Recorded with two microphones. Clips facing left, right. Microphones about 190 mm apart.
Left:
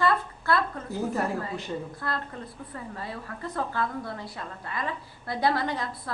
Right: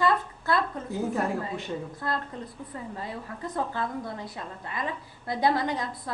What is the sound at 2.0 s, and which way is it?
A woman's voice, 20° right (ahead or behind).